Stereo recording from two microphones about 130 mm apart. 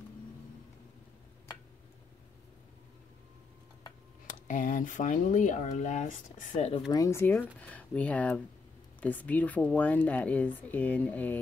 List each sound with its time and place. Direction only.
4.3 s speech: 85° left; by 6.7 s 70° left (ahead or behind)
6.9 s speech: 25° left (ahead or behind)